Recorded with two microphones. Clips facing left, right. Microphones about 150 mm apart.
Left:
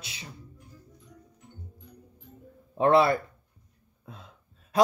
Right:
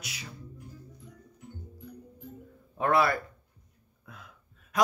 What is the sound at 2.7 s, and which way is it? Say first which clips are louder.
Speech: left 5 dB; 25° left (ahead or behind).